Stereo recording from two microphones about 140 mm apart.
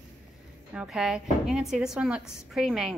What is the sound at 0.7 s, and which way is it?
A woman's voice, 5° right (ahead or behind).